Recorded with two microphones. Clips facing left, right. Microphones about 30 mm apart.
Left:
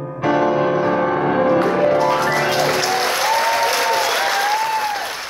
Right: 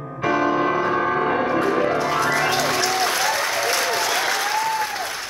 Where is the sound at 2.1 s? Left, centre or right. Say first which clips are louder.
Left 3 dB; left.